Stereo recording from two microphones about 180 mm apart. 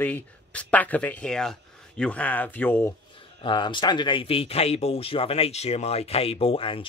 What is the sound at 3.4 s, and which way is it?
Speech, 25° left (ahead or behind).